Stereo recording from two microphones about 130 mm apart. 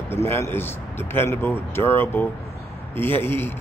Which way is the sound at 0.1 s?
20° left (ahead or behind).